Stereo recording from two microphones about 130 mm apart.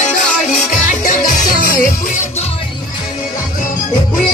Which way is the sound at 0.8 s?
90° left.